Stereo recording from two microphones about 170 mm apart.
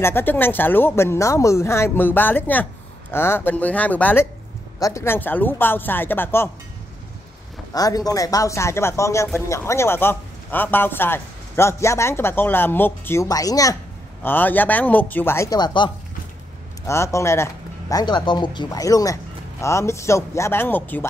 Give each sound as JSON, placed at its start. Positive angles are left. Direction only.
{"t": 0.0, "sound": "speech", "side_deg": 10}
{"t": 7.7, "sound": "speech", "side_deg": 20}